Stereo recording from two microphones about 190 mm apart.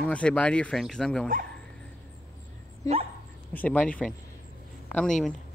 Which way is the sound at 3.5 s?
10° left (ahead or behind).